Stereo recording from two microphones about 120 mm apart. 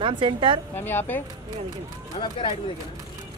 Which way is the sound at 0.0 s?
45° right (ahead or behind).